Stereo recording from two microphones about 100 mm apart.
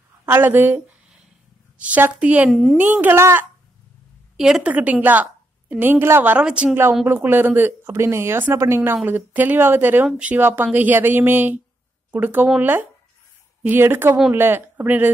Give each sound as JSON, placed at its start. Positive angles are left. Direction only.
{"t": 0.3, "sound": "speech", "side_deg": -20}
{"t": 2.5, "sound": "a woman's voice", "side_deg": 0}
{"t": 2.8, "sound": "speech", "side_deg": -20}
{"t": 4.4, "sound": "a woman's voice", "side_deg": -5}
{"t": 6.4, "sound": "speech", "side_deg": -10}
{"t": 6.7, "sound": "speech", "side_deg": -25}